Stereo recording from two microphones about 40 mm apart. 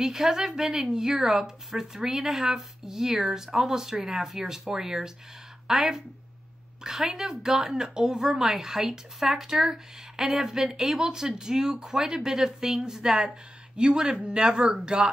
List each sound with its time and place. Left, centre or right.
0.0 s speech: centre